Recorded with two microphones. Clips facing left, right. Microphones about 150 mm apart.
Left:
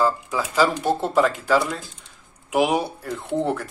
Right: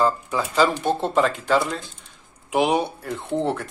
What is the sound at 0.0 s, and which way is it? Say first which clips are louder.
Speech: even; 5° left (ahead or behind).